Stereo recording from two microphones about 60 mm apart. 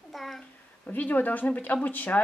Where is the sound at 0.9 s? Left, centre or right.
Left.